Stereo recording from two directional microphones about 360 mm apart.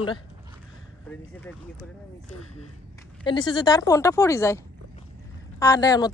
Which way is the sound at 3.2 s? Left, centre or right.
Centre.